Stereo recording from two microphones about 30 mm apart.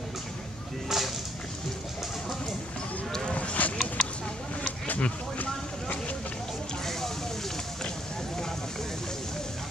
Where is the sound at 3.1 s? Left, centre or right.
Left.